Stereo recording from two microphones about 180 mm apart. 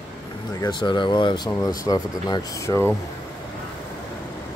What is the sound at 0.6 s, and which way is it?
Speech, 25° left (ahead or behind).